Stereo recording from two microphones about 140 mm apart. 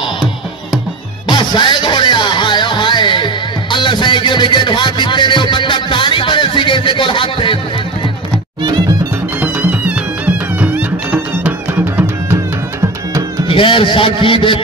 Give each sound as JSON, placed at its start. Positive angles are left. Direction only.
{"t": 1.3, "sound": "music", "side_deg": 35}
{"t": 3.7, "sound": "a sound", "side_deg": 35}
{"t": 9.4, "sound": "music", "side_deg": -10}
{"t": 13.5, "sound": "a man's voice", "side_deg": 40}